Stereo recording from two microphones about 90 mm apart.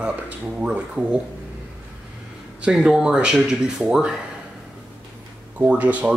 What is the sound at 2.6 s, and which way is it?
Speech, 5° right (ahead or behind).